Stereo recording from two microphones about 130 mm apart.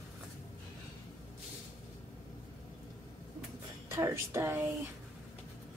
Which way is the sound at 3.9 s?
20° right (ahead or behind).